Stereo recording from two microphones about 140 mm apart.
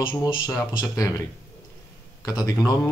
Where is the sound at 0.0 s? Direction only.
35° left (ahead or behind).